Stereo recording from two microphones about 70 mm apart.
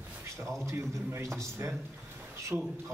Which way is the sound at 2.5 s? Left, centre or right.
Centre.